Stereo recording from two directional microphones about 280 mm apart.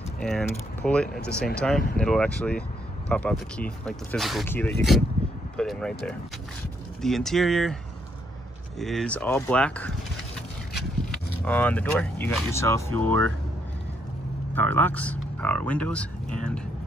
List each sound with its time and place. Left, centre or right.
0.2 s speech: centre
8.7 s speech: centre
11.4 s speech: centre
14.5 s speech: centre